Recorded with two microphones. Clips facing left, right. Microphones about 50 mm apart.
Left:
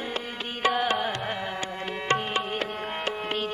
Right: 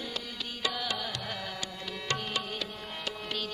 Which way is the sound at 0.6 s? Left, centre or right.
Left.